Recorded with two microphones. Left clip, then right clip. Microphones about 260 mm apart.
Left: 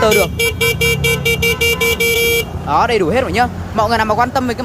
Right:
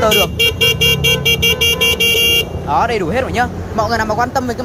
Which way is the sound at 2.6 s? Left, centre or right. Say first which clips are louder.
Left 5 dB; centre.